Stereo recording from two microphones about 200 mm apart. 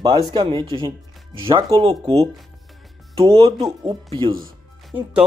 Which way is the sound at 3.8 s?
25° right (ahead or behind).